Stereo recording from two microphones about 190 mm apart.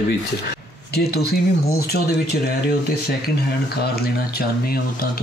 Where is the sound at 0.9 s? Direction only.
55° left (ahead or behind).